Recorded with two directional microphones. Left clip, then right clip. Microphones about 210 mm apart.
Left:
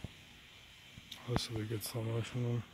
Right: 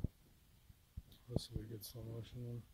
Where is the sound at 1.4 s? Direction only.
10° left (ahead or behind).